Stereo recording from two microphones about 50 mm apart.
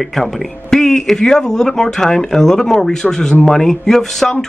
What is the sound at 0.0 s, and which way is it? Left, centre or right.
Speech, centre.